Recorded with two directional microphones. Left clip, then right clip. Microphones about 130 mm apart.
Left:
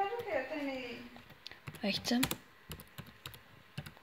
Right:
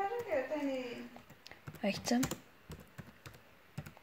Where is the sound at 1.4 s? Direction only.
Centre (ahead or behind).